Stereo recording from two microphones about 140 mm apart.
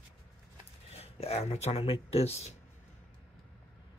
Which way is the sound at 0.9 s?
45° left (ahead or behind).